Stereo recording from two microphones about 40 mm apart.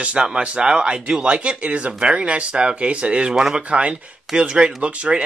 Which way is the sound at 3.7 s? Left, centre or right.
Right.